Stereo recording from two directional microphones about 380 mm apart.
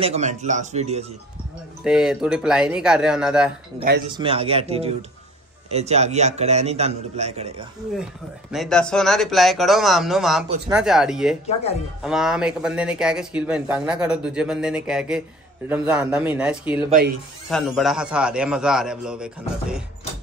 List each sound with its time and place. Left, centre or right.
0.0 s a man's voice: centre
1.9 s a man's voice: centre
4.1 s a man's voice: centre
7.9 s a man's voice: centre